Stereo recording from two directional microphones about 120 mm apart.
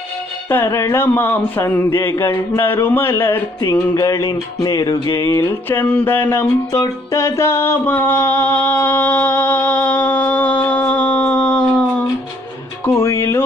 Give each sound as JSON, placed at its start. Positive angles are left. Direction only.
{"t": 0.5, "sound": "speech", "side_deg": 20}
{"t": 5.7, "sound": "a sound", "side_deg": 15}
{"t": 6.7, "sound": "music", "side_deg": 25}
{"t": 12.8, "sound": "speech", "side_deg": 20}